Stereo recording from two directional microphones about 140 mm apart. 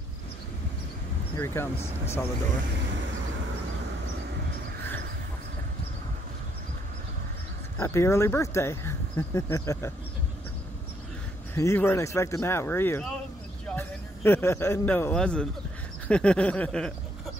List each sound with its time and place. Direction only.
1.3 s speech: 15° left (ahead or behind)
7.7 s speech: 20° left (ahead or behind)
11.5 s a man's voice: 20° left (ahead or behind)